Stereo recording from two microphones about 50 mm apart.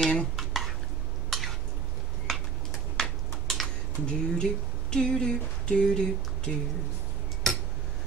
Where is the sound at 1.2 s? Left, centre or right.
Centre.